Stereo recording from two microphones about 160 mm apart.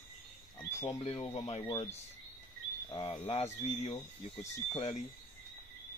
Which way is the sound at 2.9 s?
35° left (ahead or behind).